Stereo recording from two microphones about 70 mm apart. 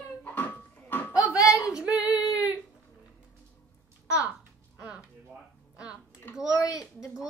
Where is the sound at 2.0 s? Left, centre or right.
Right.